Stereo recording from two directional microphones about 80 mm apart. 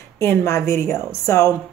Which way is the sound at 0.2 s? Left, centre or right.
Left.